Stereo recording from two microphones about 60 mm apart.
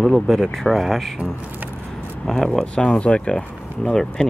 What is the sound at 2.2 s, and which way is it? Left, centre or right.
Speech, centre.